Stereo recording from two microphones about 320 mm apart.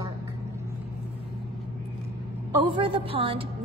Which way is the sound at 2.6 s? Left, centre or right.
Centre.